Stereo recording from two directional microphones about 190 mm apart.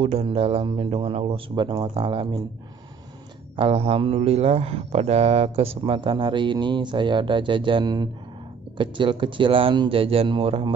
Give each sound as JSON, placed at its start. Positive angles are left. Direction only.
{"t": 0.0, "sound": "speech", "side_deg": -30}
{"t": 3.5, "sound": "speech", "side_deg": -30}